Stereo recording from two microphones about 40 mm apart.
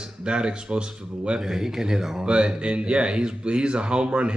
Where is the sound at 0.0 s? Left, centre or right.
Right.